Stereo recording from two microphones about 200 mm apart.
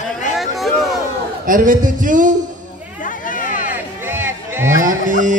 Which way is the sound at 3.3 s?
40° left (ahead or behind).